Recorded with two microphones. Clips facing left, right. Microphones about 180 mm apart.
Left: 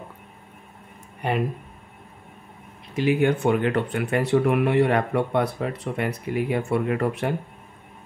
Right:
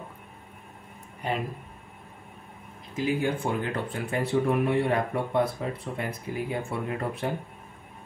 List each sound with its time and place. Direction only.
1.2 s speech: 65° left (ahead or behind)
3.0 s speech: 75° left (ahead or behind)